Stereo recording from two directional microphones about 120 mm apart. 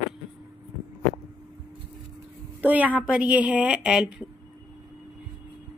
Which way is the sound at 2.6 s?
15° right (ahead or behind).